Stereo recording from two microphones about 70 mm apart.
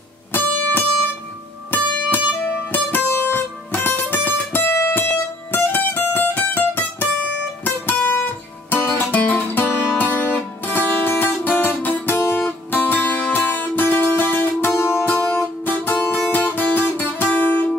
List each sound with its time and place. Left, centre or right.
0.3 s music: left
5.0 s music: left